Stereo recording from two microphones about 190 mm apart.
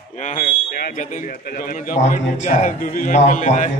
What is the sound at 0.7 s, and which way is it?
A man's voice, 50° left (ahead or behind).